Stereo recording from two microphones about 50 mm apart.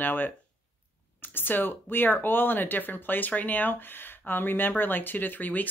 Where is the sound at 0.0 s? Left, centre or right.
Left.